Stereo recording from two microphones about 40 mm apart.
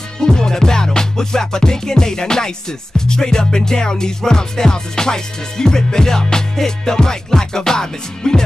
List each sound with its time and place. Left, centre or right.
0.3 s music: centre